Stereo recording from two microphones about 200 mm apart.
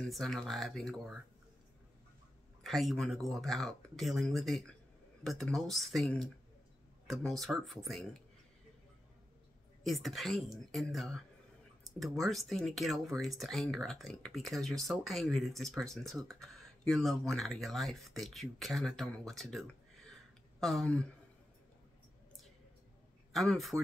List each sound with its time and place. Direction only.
0.0 s speech: centre (ahead or behind)
2.6 s speech: centre (ahead or behind)
9.8 s speech: centre (ahead or behind)
23.3 s speech: centre (ahead or behind)